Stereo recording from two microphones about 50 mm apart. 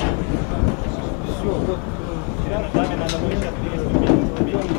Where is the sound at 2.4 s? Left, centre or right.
Centre.